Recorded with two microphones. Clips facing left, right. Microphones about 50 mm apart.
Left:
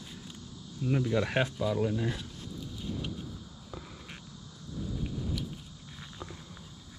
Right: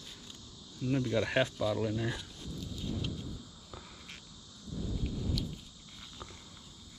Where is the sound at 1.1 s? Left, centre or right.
Centre.